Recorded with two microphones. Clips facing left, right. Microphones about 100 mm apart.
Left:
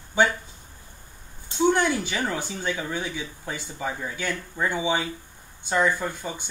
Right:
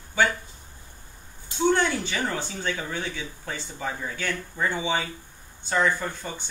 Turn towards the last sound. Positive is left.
turn(degrees=10)  # may be behind; listen again after turning